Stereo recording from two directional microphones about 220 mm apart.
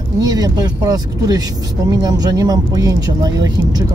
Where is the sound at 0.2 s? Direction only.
15° right (ahead or behind).